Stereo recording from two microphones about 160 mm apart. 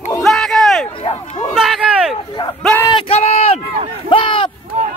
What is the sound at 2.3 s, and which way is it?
Speech, 30° left (ahead or behind).